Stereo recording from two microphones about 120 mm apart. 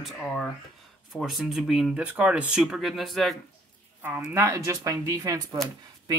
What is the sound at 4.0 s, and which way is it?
Speech, 15° right (ahead or behind).